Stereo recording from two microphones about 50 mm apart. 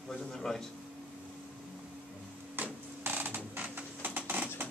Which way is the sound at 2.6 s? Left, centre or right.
Right.